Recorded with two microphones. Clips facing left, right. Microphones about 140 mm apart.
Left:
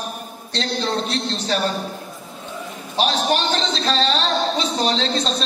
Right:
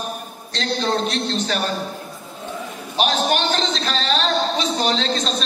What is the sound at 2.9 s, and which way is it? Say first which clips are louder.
A man's voice: even; 35° left (ahead or behind).